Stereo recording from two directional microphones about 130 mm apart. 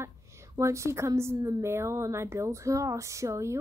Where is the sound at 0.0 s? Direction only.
20° right (ahead or behind).